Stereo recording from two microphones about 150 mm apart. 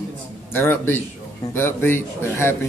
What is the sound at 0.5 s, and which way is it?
A man's voice, 15° left (ahead or behind).